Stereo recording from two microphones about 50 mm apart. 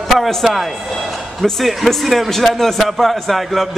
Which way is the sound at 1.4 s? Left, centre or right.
Centre.